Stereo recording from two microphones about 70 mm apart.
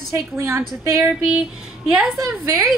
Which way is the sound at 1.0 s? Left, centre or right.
Centre.